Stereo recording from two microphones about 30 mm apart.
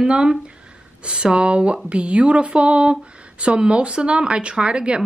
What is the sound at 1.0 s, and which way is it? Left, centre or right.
Speech, right.